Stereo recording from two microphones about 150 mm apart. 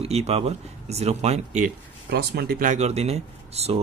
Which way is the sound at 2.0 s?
90° right.